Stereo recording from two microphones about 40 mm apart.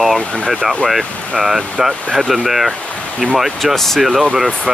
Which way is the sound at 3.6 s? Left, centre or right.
Centre.